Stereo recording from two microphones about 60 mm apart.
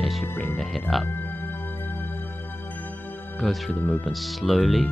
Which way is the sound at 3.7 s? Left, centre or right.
Left.